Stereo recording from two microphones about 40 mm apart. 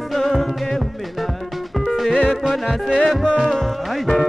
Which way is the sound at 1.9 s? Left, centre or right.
Centre.